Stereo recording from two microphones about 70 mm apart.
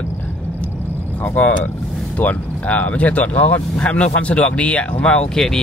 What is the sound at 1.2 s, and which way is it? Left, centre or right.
Speech, left.